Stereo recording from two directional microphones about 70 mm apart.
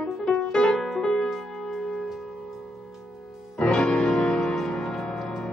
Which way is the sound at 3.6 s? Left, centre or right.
Centre.